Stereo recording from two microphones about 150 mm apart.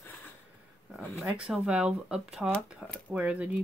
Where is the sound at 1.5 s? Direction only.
5° right (ahead or behind).